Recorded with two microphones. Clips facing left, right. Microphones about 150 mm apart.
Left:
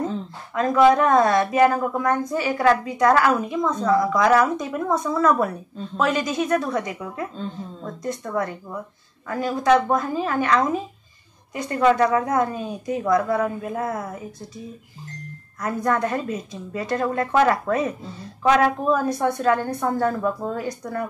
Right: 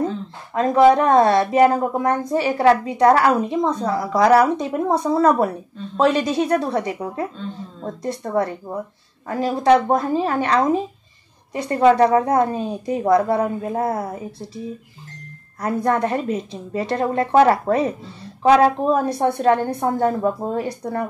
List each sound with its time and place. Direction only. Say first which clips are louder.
0.6 s a woman's voice: right 2 dB; 30° right (ahead or behind)
15.6 s a woman's voice: right 3 dB; 30° right (ahead or behind)